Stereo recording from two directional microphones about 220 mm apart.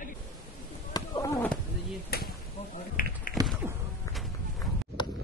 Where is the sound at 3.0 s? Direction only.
40° left (ahead or behind).